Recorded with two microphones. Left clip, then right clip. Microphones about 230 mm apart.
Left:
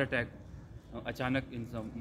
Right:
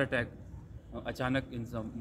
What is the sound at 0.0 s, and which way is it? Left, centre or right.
A man's voice, centre.